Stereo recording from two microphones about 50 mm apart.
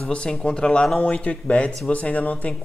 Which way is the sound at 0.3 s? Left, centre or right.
Centre.